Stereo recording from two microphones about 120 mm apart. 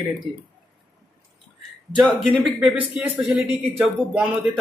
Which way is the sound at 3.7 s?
10° right (ahead or behind).